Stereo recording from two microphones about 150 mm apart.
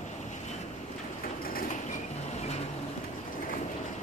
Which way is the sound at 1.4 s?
65° left (ahead or behind).